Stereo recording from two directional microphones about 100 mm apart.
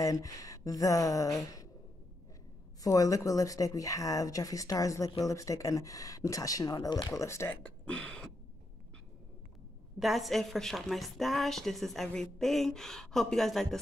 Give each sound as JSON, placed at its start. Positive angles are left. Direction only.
{"t": 0.0, "sound": "speech", "side_deg": 35}
{"t": 2.8, "sound": "speech", "side_deg": 35}
{"t": 7.2, "sound": "speech", "side_deg": 30}
{"t": 7.6, "sound": "speech", "side_deg": 10}
{"t": 9.9, "sound": "a woman's voice", "side_deg": 0}